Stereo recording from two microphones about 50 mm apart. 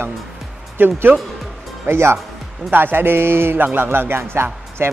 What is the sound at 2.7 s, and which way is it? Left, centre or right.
A man's voice, right.